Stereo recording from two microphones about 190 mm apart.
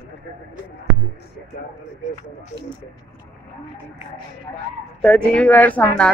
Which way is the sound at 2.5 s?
15° left (ahead or behind).